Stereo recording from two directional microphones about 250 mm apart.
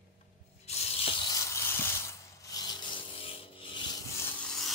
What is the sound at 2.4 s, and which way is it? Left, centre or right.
Rub, centre.